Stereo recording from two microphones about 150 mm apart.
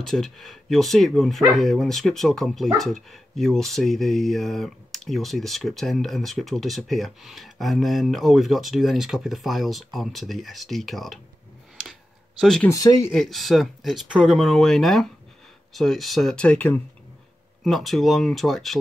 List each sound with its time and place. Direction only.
0.0 s speech: centre (ahead or behind)
12.4 s speech: 5° left (ahead or behind)
12.6 s speech: 25° left (ahead or behind)
13.1 s speech: centre (ahead or behind)
17.6 s speech: centre (ahead or behind)